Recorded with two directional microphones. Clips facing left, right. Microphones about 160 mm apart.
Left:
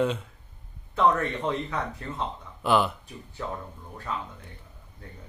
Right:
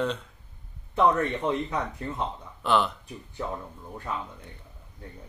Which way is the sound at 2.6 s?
5° left (ahead or behind).